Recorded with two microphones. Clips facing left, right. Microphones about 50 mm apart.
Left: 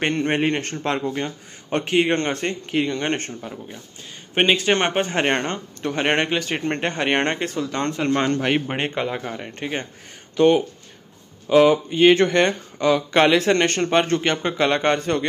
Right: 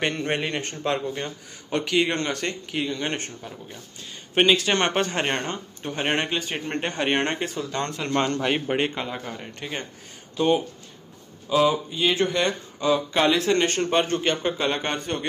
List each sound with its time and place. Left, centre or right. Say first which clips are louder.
0.0 s a man's voice: left 5 dB; left
2.7 s a man's voice: left 6 dB; left
5.5 s a man's voice: left 5 dB; left
10.3 s speech: left 6 dB; left